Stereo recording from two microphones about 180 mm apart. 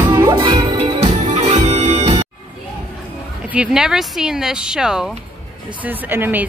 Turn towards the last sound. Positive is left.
turn(degrees=-10)  # may be behind; listen again after turning